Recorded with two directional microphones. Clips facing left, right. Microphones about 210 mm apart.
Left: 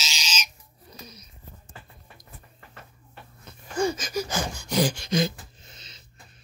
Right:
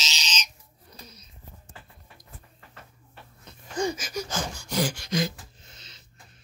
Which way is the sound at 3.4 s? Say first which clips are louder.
Left 3 dB; 20° right (ahead or behind).